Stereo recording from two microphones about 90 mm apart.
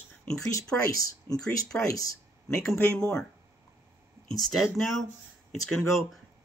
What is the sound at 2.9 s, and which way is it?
Speech, 10° left (ahead or behind).